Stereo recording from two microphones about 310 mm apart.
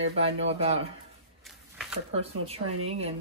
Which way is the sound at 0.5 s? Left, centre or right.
Centre.